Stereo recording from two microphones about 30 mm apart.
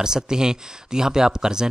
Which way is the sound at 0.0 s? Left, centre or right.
Right.